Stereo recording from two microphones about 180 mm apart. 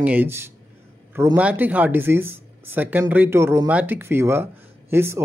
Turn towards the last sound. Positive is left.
turn(degrees=-15)  # may be behind; listen again after turning